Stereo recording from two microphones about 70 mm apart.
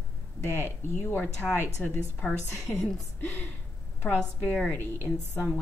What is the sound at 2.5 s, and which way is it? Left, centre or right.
Speech, centre.